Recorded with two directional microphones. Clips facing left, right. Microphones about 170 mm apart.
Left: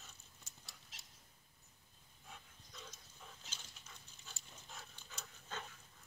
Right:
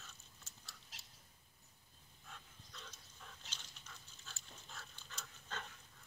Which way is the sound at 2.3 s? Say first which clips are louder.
Even; 10° left (ahead or behind).